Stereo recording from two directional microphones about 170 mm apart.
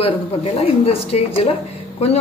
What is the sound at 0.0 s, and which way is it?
Speech, 35° left (ahead or behind).